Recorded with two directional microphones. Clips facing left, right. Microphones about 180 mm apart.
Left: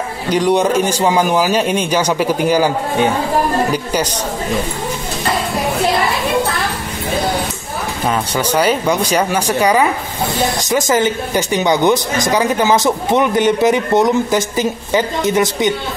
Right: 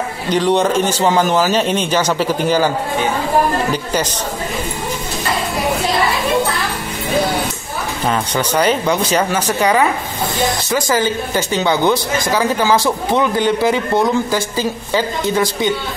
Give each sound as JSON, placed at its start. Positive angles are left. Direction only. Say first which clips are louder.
{"t": 0.3, "sound": "a man's voice", "louder": "left 1 dB", "side_deg": 10}
{"t": 3.7, "sound": "a man's voice", "louder": "left 1 dB", "side_deg": 10}
{"t": 8.1, "sound": "a man's voice", "louder": "left 1 dB", "side_deg": 10}
{"t": 10.9, "sound": "speech", "louder": "left 1 dB", "side_deg": 20}